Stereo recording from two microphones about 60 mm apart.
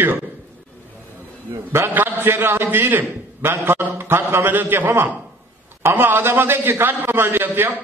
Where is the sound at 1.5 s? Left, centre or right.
Right.